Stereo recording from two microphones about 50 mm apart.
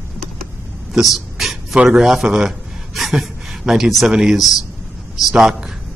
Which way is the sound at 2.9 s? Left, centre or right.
Centre.